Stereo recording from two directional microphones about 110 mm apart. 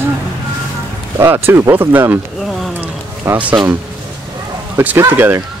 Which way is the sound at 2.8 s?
15° right (ahead or behind).